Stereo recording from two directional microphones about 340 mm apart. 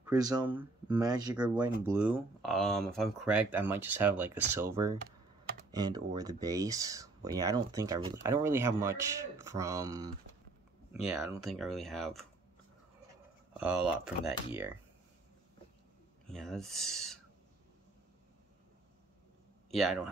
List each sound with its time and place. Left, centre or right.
0.1 s speech: centre
13.6 s speech: centre
16.3 s speech: centre
19.7 s speech: centre